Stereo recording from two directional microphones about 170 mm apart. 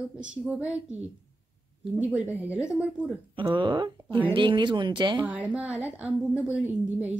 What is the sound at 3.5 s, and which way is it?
Speech, 30° right (ahead or behind).